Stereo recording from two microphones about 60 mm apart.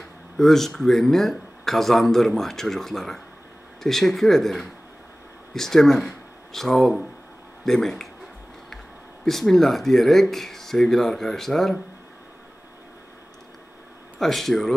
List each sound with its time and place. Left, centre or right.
0.4 s speech: centre
9.2 s speech: centre
14.2 s speech: centre